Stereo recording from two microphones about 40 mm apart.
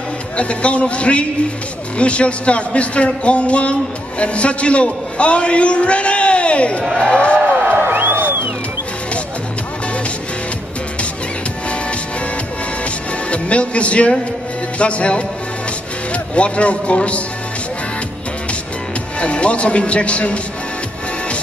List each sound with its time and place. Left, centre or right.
0.4 s a man's voice: left
7.0 s speech: centre
7.6 s music: right
13.3 s music: left
16.1 s speech: left
19.1 s speech: left